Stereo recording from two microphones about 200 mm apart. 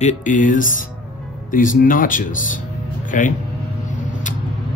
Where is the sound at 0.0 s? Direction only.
40° left (ahead or behind).